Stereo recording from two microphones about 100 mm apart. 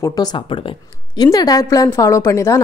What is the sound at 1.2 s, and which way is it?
A woman's voice, 40° left (ahead or behind).